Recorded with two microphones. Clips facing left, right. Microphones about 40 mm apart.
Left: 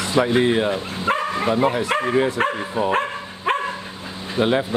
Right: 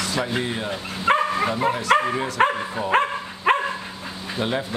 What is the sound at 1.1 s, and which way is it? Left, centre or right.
Bow-wow, right.